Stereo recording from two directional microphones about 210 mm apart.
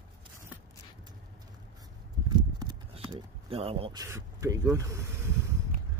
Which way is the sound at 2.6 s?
20° right (ahead or behind).